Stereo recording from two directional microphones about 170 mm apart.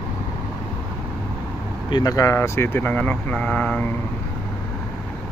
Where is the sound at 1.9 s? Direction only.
20° left (ahead or behind).